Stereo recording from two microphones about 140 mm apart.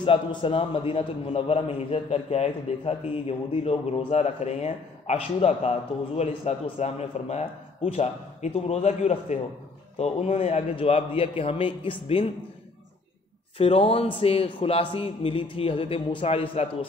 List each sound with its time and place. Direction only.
0.0 s a man's voice: 35° left (ahead or behind)
13.6 s a man's voice: 45° left (ahead or behind)